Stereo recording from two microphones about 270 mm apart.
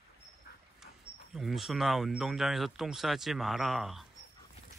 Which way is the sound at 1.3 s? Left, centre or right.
Centre.